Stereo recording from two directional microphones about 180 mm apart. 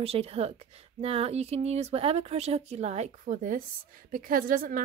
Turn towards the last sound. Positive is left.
turn(degrees=-50)  # may be behind; listen again after turning